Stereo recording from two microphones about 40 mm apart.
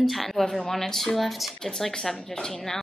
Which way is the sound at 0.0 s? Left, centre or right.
Centre.